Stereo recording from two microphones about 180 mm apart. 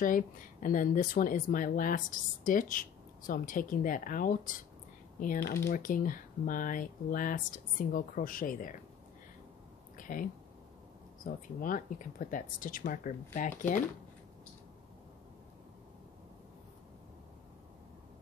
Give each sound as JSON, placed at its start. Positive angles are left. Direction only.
{"t": 0.0, "sound": "speech", "side_deg": 50}
{"t": 5.7, "sound": "speech", "side_deg": 50}
{"t": 9.9, "sound": "a sound", "side_deg": 50}
{"t": 11.2, "sound": "speech", "side_deg": 50}